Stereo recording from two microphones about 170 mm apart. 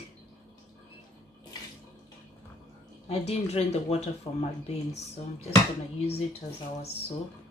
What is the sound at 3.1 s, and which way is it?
Speech, 35° left (ahead or behind).